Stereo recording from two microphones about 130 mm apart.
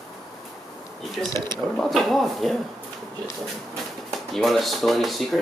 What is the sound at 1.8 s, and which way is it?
Speech, centre (ahead or behind).